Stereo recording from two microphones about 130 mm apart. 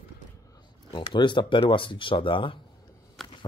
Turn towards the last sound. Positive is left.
turn(degrees=0)  # may be behind; listen again after turning